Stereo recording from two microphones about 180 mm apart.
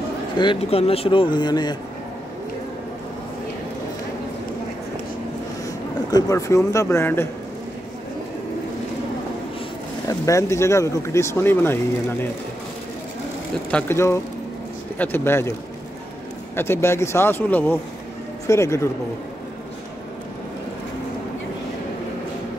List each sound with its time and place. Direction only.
0.4 s speech: 30° left (ahead or behind)
6.0 s speech: 20° left (ahead or behind)
10.0 s speech: 15° left (ahead or behind)
13.7 s speech: 10° left (ahead or behind)
16.5 s speech: 15° left (ahead or behind)